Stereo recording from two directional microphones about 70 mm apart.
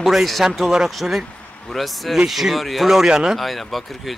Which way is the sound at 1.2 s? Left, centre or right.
Centre.